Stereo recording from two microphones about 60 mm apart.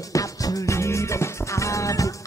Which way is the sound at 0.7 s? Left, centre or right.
Left.